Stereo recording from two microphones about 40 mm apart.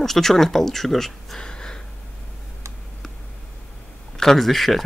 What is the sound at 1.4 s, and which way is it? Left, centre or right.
Gasp, centre.